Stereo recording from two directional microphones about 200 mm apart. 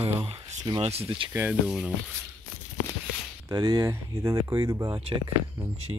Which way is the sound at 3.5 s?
20° right (ahead or behind).